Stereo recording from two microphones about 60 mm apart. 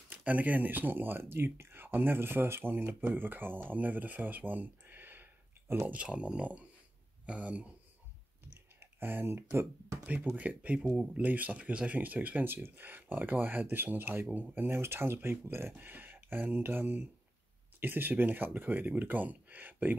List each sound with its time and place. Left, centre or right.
0.1 s speech: right
6.0 s speech: centre
8.7 s speech: right
10.3 s speech: right